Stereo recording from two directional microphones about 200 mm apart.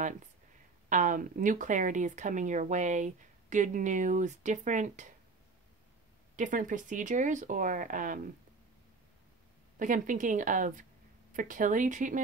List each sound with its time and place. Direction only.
0.8 s speech: 40° right (ahead or behind)
6.3 s speech: 40° right (ahead or behind)
9.8 s speech: 40° right (ahead or behind)